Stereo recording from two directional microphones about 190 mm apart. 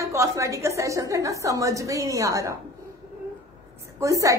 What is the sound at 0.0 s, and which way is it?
A woman's voice, 15° right (ahead or behind).